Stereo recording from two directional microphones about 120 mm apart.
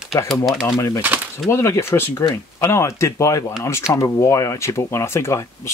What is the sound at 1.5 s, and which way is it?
Speech, 20° left (ahead or behind).